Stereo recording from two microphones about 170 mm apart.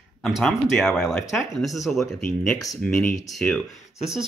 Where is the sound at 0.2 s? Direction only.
Centre (ahead or behind).